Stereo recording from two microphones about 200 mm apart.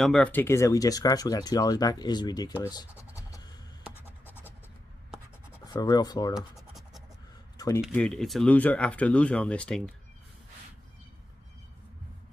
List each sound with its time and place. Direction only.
0.0 s speech: 5° left (ahead or behind)
2.9 s scratch: 10° right (ahead or behind)
3.2 s a sound: 15° left (ahead or behind)
5.7 s speech: 20° left (ahead or behind)
6.3 s scratch: centre (ahead or behind)
7.5 s a sound: 15° left (ahead or behind)
7.8 s speech: 5° left (ahead or behind)